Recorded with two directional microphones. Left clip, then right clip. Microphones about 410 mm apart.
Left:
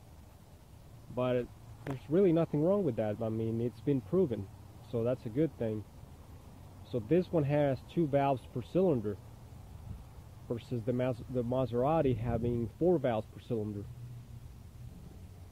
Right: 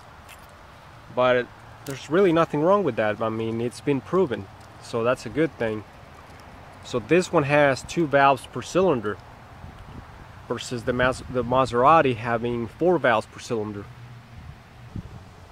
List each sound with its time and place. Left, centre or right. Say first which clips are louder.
1.1 s speech: right 12 dB; centre
6.9 s speech: right 10 dB; right
10.5 s speech: right 9 dB; centre